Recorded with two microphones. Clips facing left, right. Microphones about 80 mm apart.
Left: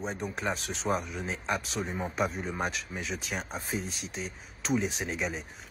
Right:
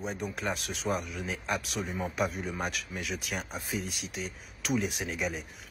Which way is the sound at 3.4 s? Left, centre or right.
Left.